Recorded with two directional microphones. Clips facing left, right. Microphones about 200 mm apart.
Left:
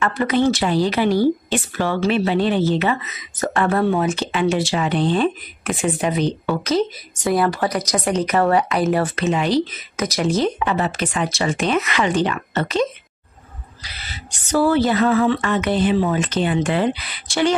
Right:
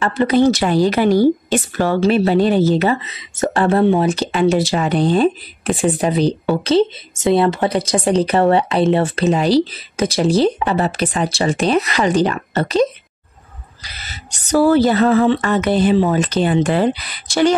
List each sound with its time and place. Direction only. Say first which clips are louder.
0.0 s speech: right 4 dB; 30° right (ahead or behind)
4.0 s speech: right 4 dB; 35° right (ahead or behind)
13.8 s speech: right 1 dB; 40° right (ahead or behind)